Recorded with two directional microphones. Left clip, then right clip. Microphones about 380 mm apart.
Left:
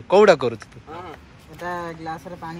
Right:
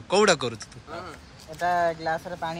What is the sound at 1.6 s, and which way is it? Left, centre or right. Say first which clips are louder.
Speech: right 6 dB; centre.